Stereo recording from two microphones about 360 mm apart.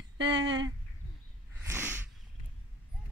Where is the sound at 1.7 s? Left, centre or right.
Centre.